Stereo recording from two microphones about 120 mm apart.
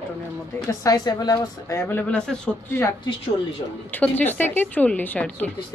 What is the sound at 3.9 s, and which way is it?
A woman's voice, 15° left (ahead or behind).